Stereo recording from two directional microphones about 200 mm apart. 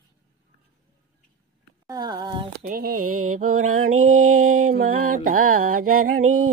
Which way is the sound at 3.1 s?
90° right.